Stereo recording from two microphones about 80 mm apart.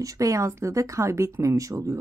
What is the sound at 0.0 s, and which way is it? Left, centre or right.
Speech, right.